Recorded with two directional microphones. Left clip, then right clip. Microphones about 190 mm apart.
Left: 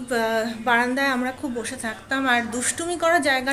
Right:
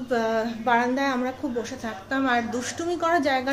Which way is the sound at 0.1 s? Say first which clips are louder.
Left 2 dB; centre (ahead or behind).